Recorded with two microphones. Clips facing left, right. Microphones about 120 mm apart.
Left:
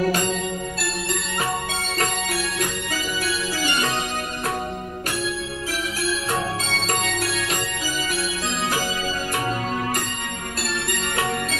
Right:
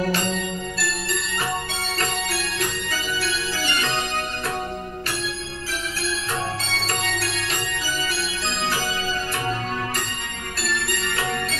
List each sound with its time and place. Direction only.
6.7 s music: 45° left (ahead or behind)